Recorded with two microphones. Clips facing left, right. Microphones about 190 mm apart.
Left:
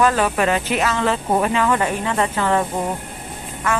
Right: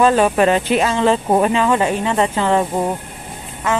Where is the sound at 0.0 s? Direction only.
25° right (ahead or behind).